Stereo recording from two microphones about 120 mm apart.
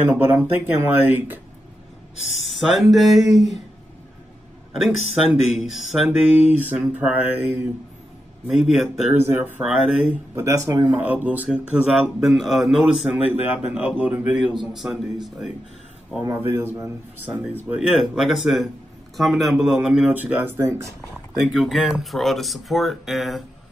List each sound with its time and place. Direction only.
0.0 s speech: 15° right (ahead or behind)
2.5 s speech: centre (ahead or behind)
4.8 s speech: centre (ahead or behind)
6.7 s speech: 15° right (ahead or behind)
8.5 s speech: 5° right (ahead or behind)
9.1 s speech: 20° right (ahead or behind)
10.3 s speech: 25° right (ahead or behind)
10.9 s speech: 15° right (ahead or behind)
16.3 s speech: 20° right (ahead or behind); by 20.1 s 5° right (ahead or behind)
20.1 s speech: 15° right (ahead or behind)
21.3 s speech: centre (ahead or behind)